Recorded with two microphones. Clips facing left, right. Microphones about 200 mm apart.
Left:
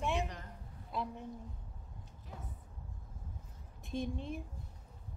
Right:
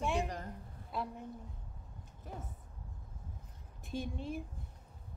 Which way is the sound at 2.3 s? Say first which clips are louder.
Right 5 dB; 50° right (ahead or behind).